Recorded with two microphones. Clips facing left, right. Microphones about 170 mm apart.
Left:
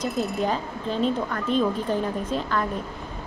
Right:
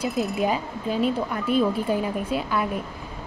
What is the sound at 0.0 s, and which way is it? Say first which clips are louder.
Speech: right 1 dB; centre (ahead or behind).